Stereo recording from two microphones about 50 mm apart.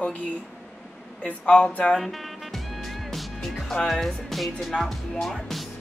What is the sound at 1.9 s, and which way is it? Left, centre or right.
Music, centre.